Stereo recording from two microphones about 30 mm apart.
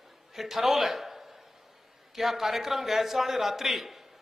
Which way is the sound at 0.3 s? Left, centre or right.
Centre.